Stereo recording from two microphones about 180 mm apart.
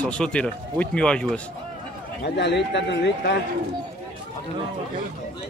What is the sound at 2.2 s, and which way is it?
A man's voice, 70° left (ahead or behind).